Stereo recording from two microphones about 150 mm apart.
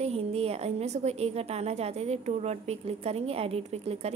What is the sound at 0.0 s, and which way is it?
A woman's voice, 45° right (ahead or behind).